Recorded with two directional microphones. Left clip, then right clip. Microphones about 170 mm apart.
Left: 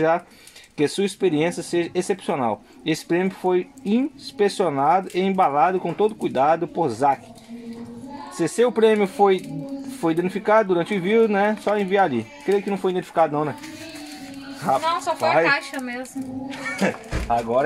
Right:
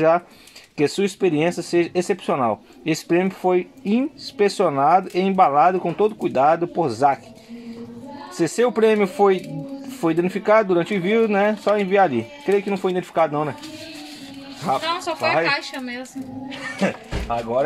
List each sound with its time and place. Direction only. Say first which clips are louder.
0.7 s speech: right 2 dB; 25° right (ahead or behind)
8.4 s speech: even; 25° right (ahead or behind)
14.6 s speech: left 1 dB; 25° right (ahead or behind)
17.3 s speech: left 1 dB; 15° right (ahead or behind)